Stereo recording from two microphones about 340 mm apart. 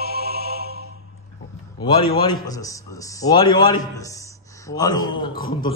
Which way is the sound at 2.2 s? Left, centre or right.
Centre.